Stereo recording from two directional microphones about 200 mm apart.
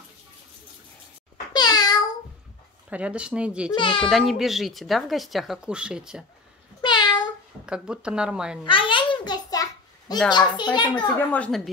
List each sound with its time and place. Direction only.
1.5 s meow: 20° left (ahead or behind)
2.9 s speech: 5° right (ahead or behind)
3.7 s a child's voice: 25° left (ahead or behind)
4.0 s speech: centre (ahead or behind)
6.8 s meow: 20° left (ahead or behind)
7.6 s speech: 5° right (ahead or behind)
8.6 s a sound: 25° left (ahead or behind)
10.3 s a child's voice: 20° left (ahead or behind)
11.1 s speech: 5° left (ahead or behind)